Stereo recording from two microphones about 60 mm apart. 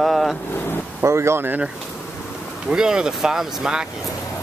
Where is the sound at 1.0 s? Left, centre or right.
Right.